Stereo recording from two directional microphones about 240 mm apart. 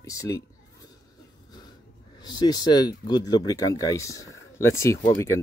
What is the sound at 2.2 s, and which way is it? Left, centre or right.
Speech, centre.